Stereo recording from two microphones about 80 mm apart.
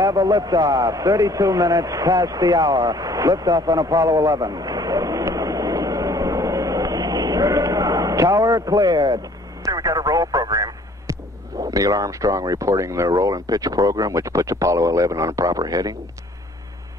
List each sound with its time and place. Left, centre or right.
0.0 s a sound: right
9.7 s radio: right
11.6 s speech: right